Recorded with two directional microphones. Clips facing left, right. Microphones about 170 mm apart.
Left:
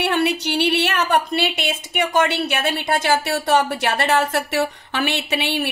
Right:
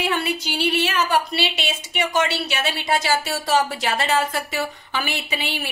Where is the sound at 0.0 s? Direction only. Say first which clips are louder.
Left 4 dB; 70° left (ahead or behind).